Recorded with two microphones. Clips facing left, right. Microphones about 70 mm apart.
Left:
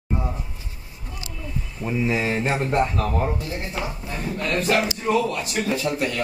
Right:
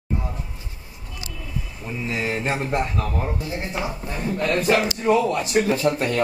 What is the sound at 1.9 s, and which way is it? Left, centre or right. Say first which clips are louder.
Speech: left 5 dB; left.